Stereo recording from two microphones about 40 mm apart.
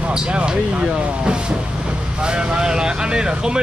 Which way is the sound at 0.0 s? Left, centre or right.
Right.